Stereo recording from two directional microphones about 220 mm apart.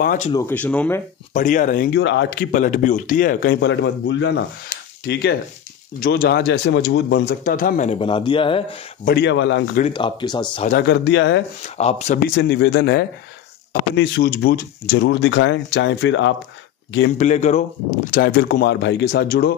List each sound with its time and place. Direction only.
0.0 s a man's voice: 40° left (ahead or behind)
0.3 s speech: 10° left (ahead or behind)
1.3 s speech: 35° left (ahead or behind); by 4.5 s 55° left (ahead or behind)
4.6 s a sound: 45° left (ahead or behind)
5.9 s a man's voice: 40° left (ahead or behind); by 8.6 s 25° left (ahead or behind)
9.0 s speech: 50° left (ahead or behind)
9.8 s speech: 20° left (ahead or behind)
10.7 s speech: 50° left (ahead or behind)
11.6 s a man's voice: 30° left (ahead or behind)
12.4 s speech: 50° left (ahead or behind)
17.2 s speech: 30° left (ahead or behind)